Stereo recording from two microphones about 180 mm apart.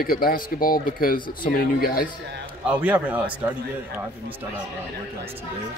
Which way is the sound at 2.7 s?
10° right (ahead or behind).